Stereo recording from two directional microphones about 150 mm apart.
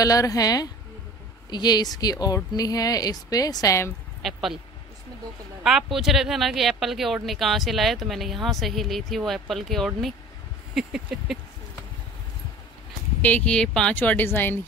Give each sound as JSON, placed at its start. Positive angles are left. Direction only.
{"t": 0.0, "sound": "speech", "side_deg": 25}
{"t": 4.2, "sound": "speech", "side_deg": 0}
{"t": 5.6, "sound": "speech", "side_deg": -5}
{"t": 13.2, "sound": "speech", "side_deg": 10}